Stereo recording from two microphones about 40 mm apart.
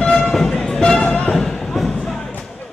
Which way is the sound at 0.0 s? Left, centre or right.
Centre.